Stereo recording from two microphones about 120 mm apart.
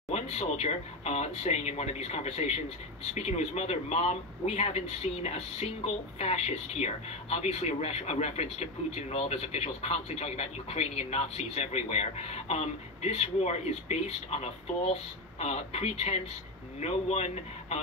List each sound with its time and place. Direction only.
0.1 s a man's voice: 65° left (ahead or behind)